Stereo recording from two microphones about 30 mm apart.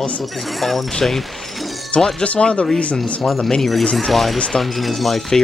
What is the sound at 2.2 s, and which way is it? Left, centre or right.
Speech, left.